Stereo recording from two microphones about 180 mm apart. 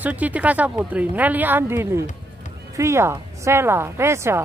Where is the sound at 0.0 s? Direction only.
10° right (ahead or behind).